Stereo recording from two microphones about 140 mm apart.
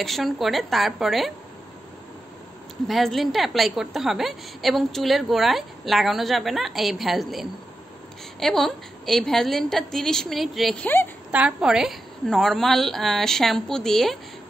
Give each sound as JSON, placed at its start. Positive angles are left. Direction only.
{"t": 0.0, "sound": "a woman's voice", "side_deg": 0}
{"t": 2.9, "sound": "a woman's voice", "side_deg": 0}